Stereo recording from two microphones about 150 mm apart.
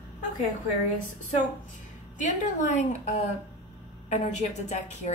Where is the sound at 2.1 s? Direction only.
55° left (ahead or behind).